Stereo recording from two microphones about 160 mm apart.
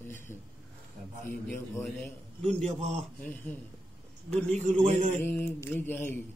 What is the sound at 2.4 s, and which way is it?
Speech, 45° right (ahead or behind).